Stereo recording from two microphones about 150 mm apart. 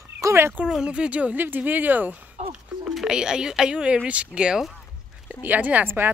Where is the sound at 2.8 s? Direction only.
5° right (ahead or behind).